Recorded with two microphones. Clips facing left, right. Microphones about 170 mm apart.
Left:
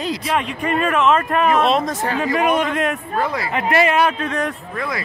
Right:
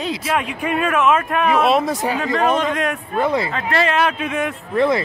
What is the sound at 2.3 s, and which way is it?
Speech, 10° left (ahead or behind).